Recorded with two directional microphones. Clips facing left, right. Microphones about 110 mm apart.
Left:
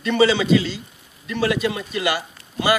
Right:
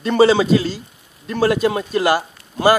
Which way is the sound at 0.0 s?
40° right (ahead or behind).